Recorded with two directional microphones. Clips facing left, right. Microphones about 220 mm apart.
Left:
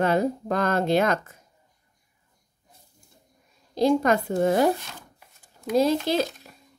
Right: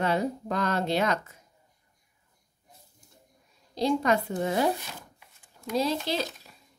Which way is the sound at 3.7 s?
50° left (ahead or behind).